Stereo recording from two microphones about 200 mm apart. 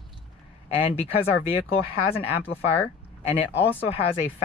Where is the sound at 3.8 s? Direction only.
30° left (ahead or behind).